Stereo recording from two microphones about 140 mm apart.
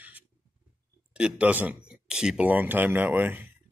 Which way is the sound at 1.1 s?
10° right (ahead or behind).